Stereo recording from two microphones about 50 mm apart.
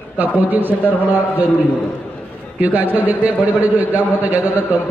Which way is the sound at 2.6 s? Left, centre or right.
Right.